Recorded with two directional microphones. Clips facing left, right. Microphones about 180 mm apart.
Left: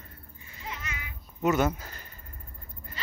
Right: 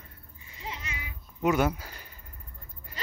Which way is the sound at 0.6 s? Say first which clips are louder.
Even; 25° right (ahead or behind).